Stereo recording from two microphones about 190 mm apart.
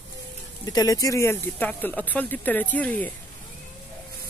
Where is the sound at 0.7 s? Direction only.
20° left (ahead or behind).